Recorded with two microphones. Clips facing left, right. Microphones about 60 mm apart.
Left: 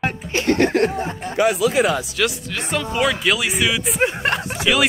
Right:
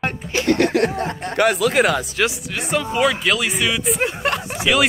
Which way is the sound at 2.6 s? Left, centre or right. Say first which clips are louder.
Right 2 dB; centre.